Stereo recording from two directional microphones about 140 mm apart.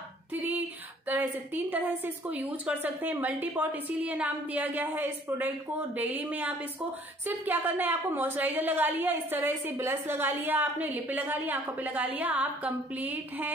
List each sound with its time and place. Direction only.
0.3 s a woman's voice: 15° right (ahead or behind)